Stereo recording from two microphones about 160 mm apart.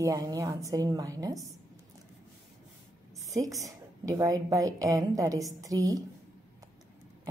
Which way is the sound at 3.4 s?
20° right (ahead or behind).